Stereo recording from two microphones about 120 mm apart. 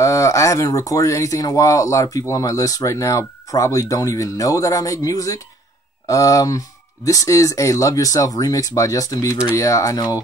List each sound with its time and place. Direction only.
0.0 s speech: 25° left (ahead or behind)